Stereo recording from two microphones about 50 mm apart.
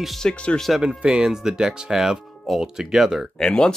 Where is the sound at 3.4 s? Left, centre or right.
Centre.